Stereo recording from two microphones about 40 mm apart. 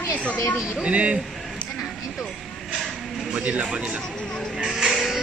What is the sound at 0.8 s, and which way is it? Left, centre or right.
Speech, right.